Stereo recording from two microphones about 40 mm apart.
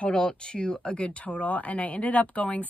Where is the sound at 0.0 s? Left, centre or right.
Left.